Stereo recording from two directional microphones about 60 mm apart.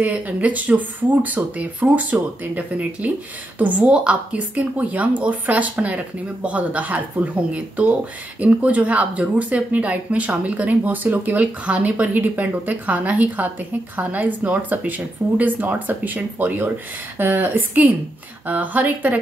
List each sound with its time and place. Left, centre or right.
0.0 s speech: right